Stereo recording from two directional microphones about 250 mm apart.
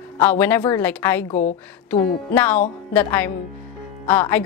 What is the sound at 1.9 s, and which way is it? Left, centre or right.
A woman's voice, centre.